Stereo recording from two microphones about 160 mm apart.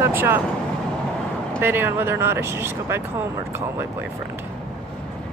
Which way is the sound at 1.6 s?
15° right (ahead or behind).